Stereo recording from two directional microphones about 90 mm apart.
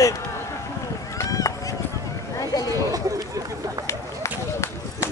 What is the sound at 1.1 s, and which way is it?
Run, 35° left (ahead or behind).